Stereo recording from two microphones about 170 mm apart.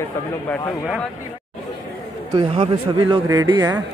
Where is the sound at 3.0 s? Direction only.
20° right (ahead or behind).